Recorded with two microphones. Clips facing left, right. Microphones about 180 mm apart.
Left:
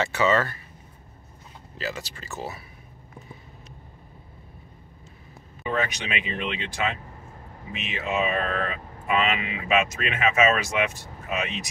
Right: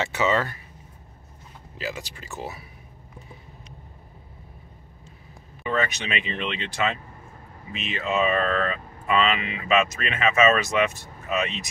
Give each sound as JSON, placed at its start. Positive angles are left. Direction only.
{"t": 0.0, "sound": "speech", "side_deg": -20}
{"t": 1.8, "sound": "speech", "side_deg": -15}
{"t": 5.6, "sound": "speech", "side_deg": 10}